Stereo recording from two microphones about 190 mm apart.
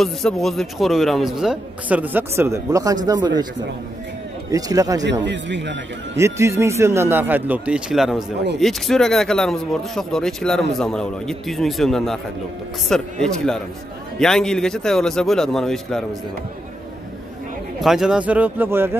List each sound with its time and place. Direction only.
0.0 s speech: centre (ahead or behind); by 3.4 s 20° right (ahead or behind)
4.5 s speech: 20° right (ahead or behind)
5.2 s speech: 70° right (ahead or behind)
6.1 s a man's voice: 15° right (ahead or behind); by 16.2 s centre (ahead or behind)
17.7 s a man's voice: centre (ahead or behind)